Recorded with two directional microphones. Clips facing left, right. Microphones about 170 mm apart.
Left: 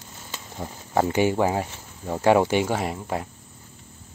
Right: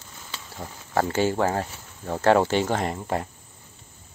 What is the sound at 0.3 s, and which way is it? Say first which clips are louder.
Speech: left 3 dB; 20° left (ahead or behind).